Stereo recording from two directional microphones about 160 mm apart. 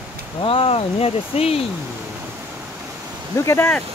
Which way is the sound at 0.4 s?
35° left (ahead or behind).